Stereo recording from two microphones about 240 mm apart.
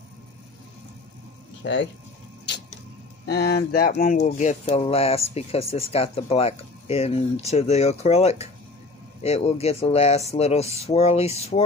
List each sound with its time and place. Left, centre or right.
1.6 s speech: left
3.3 s speech: left